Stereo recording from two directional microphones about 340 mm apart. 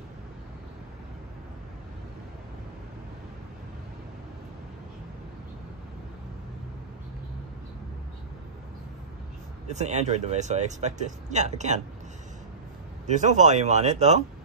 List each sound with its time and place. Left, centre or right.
9.7 s speech: centre
13.0 s speech: right